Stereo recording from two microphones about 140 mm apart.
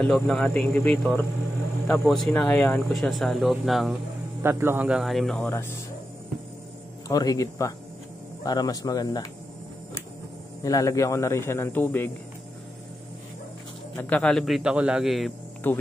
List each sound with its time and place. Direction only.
0.0 s a man's voice: 5° left (ahead or behind)
4.4 s speech: 15° right (ahead or behind); by 5.4 s centre (ahead or behind)
5.4 s speech: 15° left (ahead or behind)
7.1 s a man's voice: 25° left (ahead or behind)
10.6 s a man's voice: 25° left (ahead or behind)
13.9 s a man's voice: 10° left (ahead or behind)
15.7 s speech: 10° left (ahead or behind)